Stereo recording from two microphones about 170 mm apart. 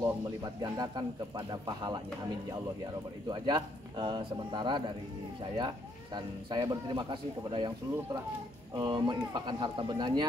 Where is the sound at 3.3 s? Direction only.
25° right (ahead or behind).